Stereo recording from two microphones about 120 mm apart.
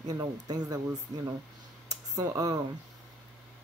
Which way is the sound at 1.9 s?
30° right (ahead or behind).